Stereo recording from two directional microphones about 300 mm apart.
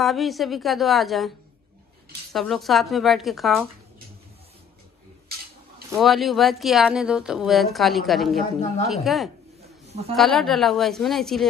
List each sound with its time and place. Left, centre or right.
0.0 s speech: centre
2.3 s speech: centre
5.9 s speech: centre
9.8 s a sound: right
10.1 s speech: centre